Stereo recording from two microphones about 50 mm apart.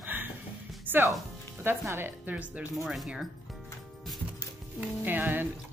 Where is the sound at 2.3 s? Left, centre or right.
Right.